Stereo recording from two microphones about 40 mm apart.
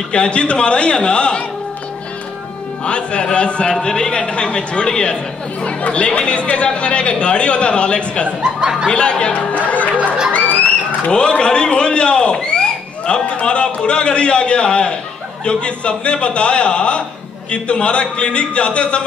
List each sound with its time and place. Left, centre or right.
0.1 s speech: left
2.8 s speech: left
8.5 s speech: centre
8.8 s speech: left
11.1 s a man's voice: left